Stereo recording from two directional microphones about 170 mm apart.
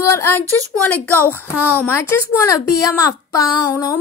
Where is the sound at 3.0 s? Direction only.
20° left (ahead or behind).